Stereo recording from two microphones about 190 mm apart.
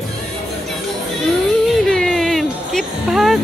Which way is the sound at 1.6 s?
Centre (ahead or behind).